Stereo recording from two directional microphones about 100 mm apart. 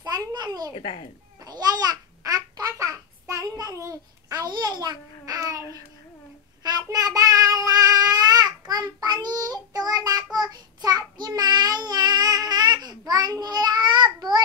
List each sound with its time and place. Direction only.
0.0 s babbling: 40° right (ahead or behind)
0.7 s a child's voice: 80° left
1.4 s babbling: 40° right (ahead or behind)
4.5 s a child's voice: 45° right (ahead or behind)
6.6 s child singing: 40° right (ahead or behind)